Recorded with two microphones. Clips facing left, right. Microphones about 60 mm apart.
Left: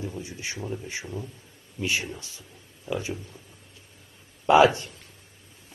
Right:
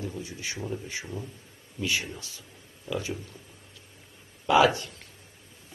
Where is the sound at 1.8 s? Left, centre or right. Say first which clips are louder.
Left 1 dB; left.